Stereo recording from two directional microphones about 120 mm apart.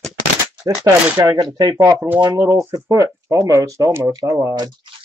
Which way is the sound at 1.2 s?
30° right (ahead or behind).